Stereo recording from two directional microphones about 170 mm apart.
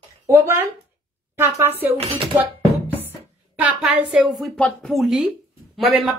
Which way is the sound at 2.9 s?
10° left (ahead or behind).